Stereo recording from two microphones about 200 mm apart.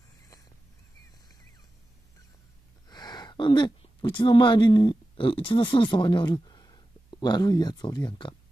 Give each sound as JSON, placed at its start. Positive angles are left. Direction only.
{"t": 2.9, "sound": "speech", "side_deg": 20}